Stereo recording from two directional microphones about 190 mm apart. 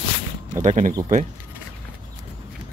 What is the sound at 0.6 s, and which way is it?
Speech, 40° right (ahead or behind).